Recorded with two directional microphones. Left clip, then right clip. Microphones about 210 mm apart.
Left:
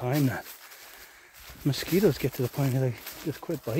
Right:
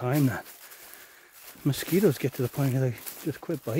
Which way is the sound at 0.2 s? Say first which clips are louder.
Right 1 dB; 5° right (ahead or behind).